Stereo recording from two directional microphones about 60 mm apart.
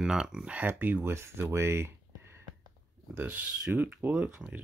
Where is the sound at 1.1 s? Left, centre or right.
Right.